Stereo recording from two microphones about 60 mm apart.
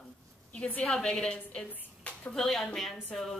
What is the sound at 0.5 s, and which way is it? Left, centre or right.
A woman's voice, left.